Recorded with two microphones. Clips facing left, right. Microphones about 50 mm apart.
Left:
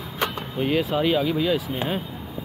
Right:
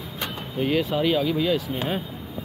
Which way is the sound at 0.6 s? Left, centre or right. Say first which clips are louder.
Even; centre.